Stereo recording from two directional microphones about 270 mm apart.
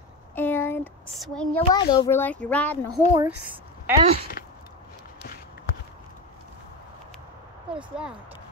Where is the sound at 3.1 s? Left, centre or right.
Centre.